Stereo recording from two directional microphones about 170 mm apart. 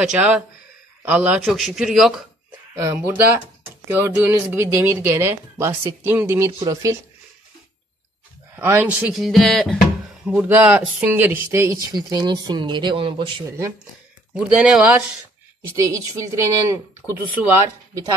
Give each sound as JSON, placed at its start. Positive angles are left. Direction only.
{"t": 0.0, "sound": "speech", "side_deg": -5}
{"t": 8.5, "sound": "speech", "side_deg": -10}
{"t": 10.2, "sound": "speech", "side_deg": -10}
{"t": 14.3, "sound": "speech", "side_deg": -5}
{"t": 15.6, "sound": "speech", "side_deg": -20}